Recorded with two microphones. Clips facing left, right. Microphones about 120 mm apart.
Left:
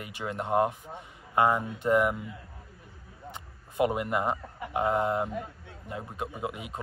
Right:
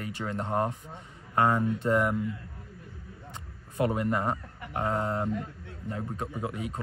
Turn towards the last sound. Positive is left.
turn(degrees=15)  # may be behind; listen again after turning